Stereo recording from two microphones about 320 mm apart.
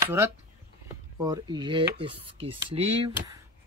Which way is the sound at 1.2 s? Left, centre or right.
Centre.